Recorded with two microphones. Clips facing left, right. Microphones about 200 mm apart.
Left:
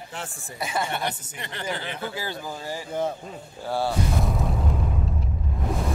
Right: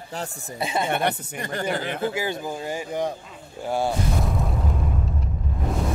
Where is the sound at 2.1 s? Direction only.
20° right (ahead or behind).